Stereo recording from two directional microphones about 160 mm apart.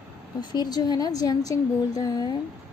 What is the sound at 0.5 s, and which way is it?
A woman's voice, 25° left (ahead or behind).